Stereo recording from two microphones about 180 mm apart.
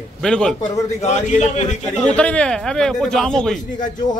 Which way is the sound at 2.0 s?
5° left (ahead or behind).